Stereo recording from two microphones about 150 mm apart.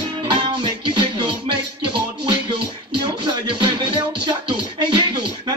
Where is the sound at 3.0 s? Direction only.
30° right (ahead or behind).